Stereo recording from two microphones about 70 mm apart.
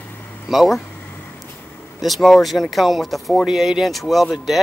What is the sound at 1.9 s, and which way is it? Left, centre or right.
Speech, centre.